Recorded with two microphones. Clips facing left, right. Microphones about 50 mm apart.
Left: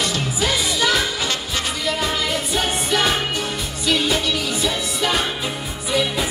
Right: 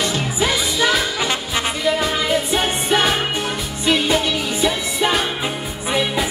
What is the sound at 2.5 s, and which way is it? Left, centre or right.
Music, right.